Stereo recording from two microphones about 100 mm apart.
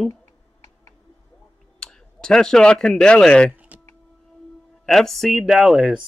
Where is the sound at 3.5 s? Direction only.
15° right (ahead or behind).